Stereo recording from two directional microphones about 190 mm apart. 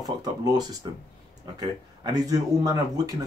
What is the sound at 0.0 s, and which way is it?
Speech, 20° right (ahead or behind).